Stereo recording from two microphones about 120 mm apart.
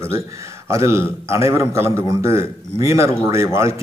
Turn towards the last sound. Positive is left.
turn(degrees=-25)  # may be behind; listen again after turning